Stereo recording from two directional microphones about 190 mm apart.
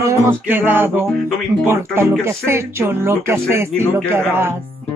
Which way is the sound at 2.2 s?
15° right (ahead or behind).